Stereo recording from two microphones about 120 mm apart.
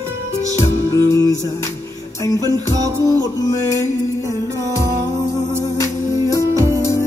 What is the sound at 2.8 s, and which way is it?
Music, 30° right (ahead or behind).